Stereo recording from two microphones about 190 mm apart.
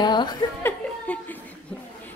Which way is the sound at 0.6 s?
10° left (ahead or behind).